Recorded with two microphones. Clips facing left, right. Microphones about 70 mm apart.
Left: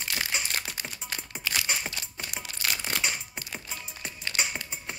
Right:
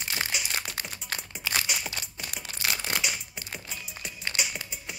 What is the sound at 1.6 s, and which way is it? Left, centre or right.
Crumpling, left.